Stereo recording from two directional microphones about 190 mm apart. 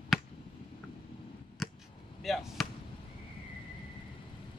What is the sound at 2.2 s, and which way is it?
Speech, centre (ahead or behind).